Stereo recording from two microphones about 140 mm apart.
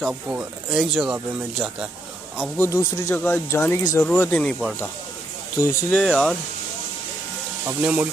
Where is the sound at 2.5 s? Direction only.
15° left (ahead or behind).